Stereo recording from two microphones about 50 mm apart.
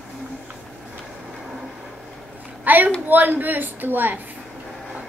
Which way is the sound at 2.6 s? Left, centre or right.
Right.